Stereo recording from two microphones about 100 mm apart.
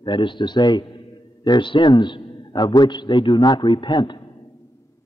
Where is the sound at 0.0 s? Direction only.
55° left (ahead or behind).